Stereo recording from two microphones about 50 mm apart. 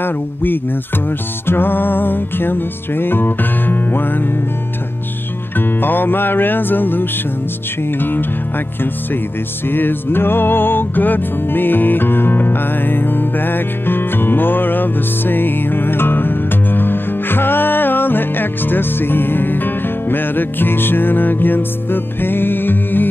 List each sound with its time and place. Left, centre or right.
0.0 s music: left
5.6 s music: left
9.7 s music: left